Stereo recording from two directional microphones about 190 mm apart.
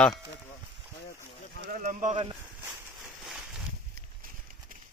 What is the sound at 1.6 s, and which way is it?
Speech, 45° right (ahead or behind).